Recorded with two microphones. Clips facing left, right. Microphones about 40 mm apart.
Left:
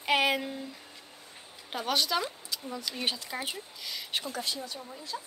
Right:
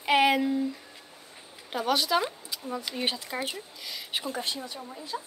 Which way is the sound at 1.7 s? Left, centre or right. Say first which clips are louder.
Right 4 dB; centre.